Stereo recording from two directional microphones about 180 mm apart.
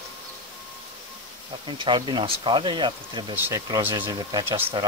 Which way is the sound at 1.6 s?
25° right (ahead or behind).